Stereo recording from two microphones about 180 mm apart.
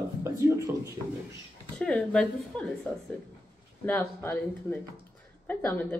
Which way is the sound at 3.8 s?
10° left (ahead or behind).